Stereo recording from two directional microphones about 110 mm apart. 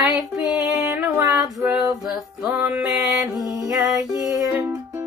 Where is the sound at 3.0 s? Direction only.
25° right (ahead or behind).